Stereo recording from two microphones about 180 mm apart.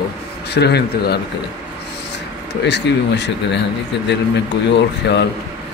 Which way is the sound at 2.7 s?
70° left (ahead or behind).